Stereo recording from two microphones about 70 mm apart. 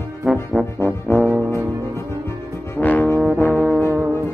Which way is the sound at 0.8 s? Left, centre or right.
Left.